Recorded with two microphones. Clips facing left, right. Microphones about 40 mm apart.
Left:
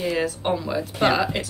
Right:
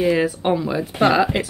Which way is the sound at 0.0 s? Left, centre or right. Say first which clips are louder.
Right 6 dB; centre.